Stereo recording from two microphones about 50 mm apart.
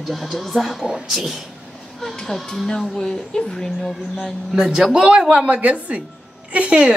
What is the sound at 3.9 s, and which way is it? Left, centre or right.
Speech, centre.